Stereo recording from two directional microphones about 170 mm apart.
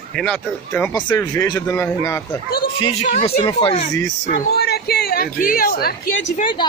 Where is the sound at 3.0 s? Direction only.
40° left (ahead or behind).